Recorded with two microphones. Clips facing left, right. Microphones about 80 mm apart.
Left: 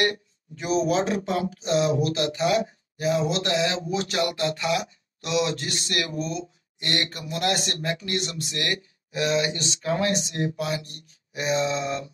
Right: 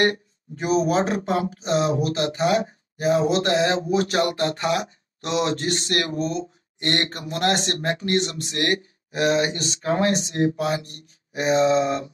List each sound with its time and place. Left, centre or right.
0.0 s speech: right